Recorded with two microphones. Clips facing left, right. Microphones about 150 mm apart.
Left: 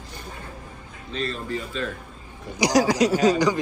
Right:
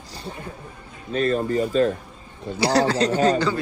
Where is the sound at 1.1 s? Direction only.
50° right (ahead or behind).